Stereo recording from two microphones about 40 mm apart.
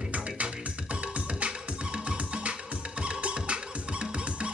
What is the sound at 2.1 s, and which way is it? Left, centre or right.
Music, right.